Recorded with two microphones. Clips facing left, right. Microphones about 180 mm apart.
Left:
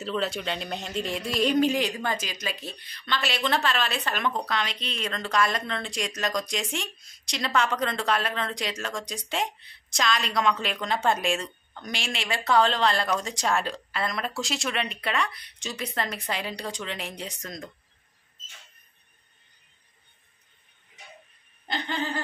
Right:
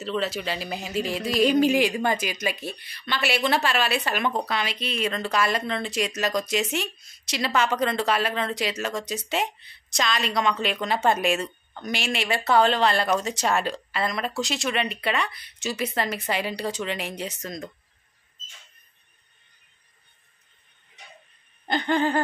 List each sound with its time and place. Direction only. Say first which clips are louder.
0.0 s a woman's voice: right 1 dB; centre (ahead or behind)
21.6 s laughter: right 7 dB; 55° right (ahead or behind)